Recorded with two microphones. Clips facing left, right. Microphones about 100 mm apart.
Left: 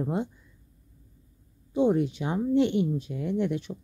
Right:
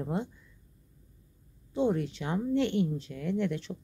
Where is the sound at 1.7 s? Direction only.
15° left (ahead or behind).